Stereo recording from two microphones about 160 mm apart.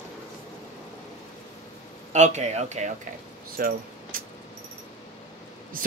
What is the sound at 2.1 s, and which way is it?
Speech, 45° right (ahead or behind).